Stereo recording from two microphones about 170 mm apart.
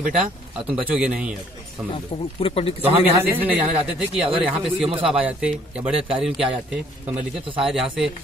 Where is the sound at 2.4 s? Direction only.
35° left (ahead or behind).